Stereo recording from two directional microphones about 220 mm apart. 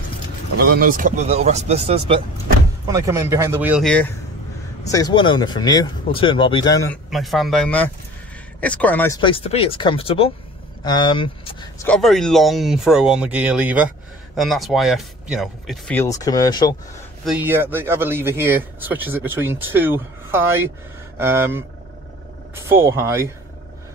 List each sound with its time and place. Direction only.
0.7 s speech: 40° right (ahead or behind)
2.9 s a man's voice: 15° right (ahead or behind); by 4.1 s 5° left (ahead or behind)
4.9 s speech: 20° left (ahead or behind)
6.9 s speech: centre (ahead or behind)
9.2 s speech: 25° left (ahead or behind)
11.8 s speech: 5° left (ahead or behind)
16.0 s speech: 15° left (ahead or behind)
17.2 s a man's voice: 5° right (ahead or behind)
22.7 s a man's voice: 10° right (ahead or behind)